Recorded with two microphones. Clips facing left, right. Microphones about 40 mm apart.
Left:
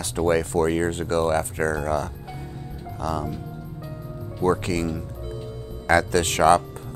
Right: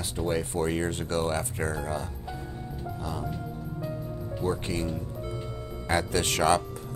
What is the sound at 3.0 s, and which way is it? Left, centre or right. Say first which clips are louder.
Speech: left 10 dB; left.